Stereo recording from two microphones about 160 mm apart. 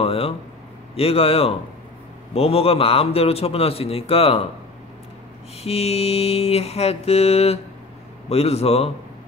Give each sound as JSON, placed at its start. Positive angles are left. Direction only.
{"t": 0.0, "sound": "a sound", "side_deg": 35}
{"t": 0.9, "sound": "a man's voice", "side_deg": 40}
{"t": 5.6, "sound": "a man's voice", "side_deg": 40}